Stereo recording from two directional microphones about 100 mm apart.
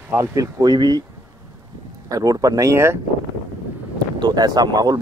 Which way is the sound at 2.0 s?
35° right (ahead or behind).